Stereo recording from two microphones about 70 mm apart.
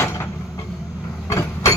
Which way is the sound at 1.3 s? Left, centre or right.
Left.